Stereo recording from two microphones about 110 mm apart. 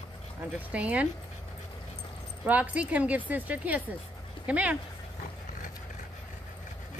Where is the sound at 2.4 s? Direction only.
15° right (ahead or behind).